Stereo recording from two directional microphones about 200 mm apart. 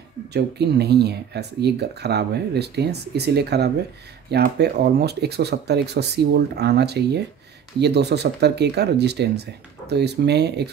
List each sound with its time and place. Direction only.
0.3 s speech: 55° right (ahead or behind)